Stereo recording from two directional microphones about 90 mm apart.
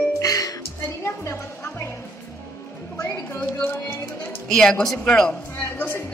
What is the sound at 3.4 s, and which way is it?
Music, 20° left (ahead or behind).